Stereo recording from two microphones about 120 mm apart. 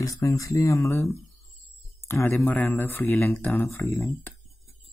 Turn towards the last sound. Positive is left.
turn(degrees=20)  # may be behind; listen again after turning